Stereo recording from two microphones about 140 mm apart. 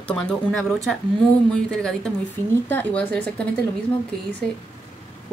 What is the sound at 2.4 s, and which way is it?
Speech, 15° left (ahead or behind).